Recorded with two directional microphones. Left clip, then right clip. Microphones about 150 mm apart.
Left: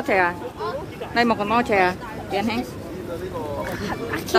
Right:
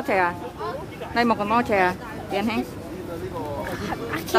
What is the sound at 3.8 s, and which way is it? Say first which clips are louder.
Speech: left 1 dB; 30° right (ahead or behind).